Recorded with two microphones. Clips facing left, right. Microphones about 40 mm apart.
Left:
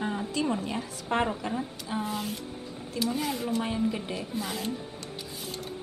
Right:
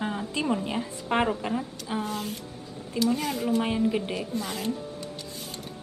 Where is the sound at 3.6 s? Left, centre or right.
Right.